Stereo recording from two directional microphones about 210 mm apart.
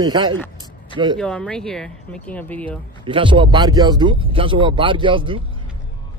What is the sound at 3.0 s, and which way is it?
Speech, 25° right (ahead or behind).